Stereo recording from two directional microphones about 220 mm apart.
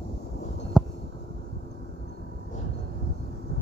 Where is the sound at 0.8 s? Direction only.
Centre (ahead or behind).